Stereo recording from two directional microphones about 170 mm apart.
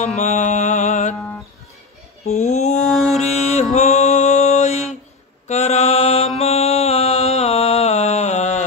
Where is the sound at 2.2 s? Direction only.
40° left (ahead or behind).